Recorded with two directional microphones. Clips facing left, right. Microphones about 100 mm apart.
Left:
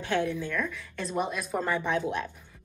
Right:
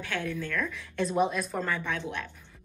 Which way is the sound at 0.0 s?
25° left (ahead or behind).